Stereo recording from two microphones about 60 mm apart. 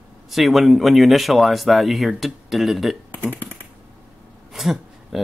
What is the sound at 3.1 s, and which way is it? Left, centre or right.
Speech, left.